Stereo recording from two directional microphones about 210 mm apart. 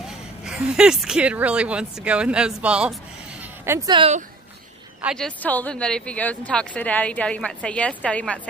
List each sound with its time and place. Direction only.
0.0 s a woman's voice: 5° right (ahead or behind)
3.9 s speech: 25° right (ahead or behind)
5.0 s speech: 5° left (ahead or behind)